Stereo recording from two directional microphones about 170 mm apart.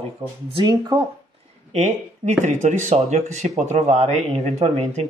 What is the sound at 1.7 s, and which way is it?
Speech, 45° right (ahead or behind).